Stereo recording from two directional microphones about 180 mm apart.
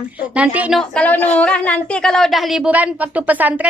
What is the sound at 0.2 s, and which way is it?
A woman's voice, 5° right (ahead or behind).